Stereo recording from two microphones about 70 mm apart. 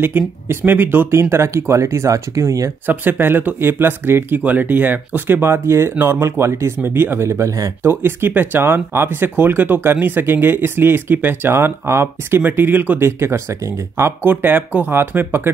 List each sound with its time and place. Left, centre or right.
0.0 s speech: right
2.9 s speech: right
7.8 s speech: right
13.2 s speech: right
14.2 s speech: right